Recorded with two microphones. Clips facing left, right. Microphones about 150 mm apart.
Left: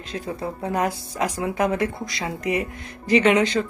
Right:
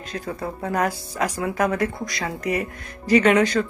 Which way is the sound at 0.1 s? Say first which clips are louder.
Left 1 dB; 25° left (ahead or behind).